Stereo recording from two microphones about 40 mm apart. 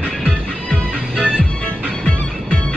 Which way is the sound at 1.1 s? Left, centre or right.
Right.